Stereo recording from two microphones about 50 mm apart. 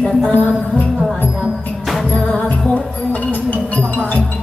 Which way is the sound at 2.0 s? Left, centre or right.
Left.